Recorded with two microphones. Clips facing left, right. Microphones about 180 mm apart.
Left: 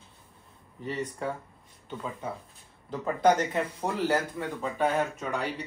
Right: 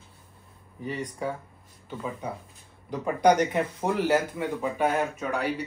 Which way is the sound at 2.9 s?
15° right (ahead or behind).